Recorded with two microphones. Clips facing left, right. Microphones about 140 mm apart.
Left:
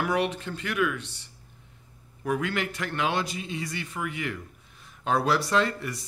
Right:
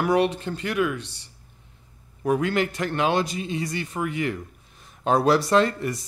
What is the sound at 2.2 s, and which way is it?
A man's voice, 35° right (ahead or behind).